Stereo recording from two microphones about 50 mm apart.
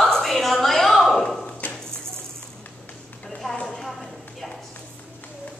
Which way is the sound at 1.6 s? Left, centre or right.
Left.